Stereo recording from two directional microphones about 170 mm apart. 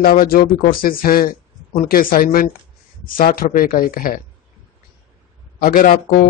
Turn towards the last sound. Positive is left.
turn(degrees=55)  # may be behind; listen again after turning